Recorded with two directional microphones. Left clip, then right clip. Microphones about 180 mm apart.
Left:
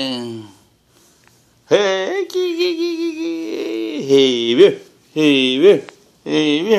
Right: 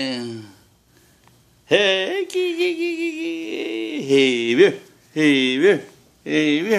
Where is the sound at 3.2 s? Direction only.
20° right (ahead or behind).